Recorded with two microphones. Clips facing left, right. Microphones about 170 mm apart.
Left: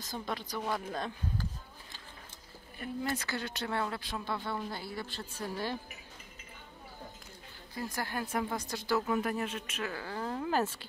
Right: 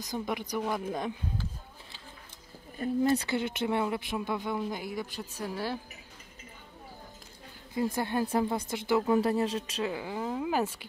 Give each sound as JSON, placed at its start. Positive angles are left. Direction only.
{"t": 0.0, "sound": "a woman's voice", "side_deg": -15}
{"t": 2.8, "sound": "a woman's voice", "side_deg": -25}
{"t": 7.7, "sound": "speech", "side_deg": -20}
{"t": 9.8, "sound": "a woman's voice", "side_deg": -15}